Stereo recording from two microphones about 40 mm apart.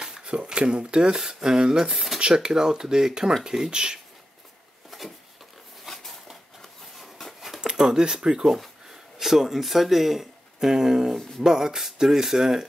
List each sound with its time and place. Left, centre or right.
0.0 s speech: right
5.9 s a sound: centre
7.6 s speech: centre
9.2 s speech: centre
11.1 s speech: centre
11.4 s speech: centre